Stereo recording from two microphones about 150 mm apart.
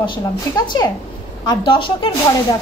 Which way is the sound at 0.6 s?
30° left (ahead or behind).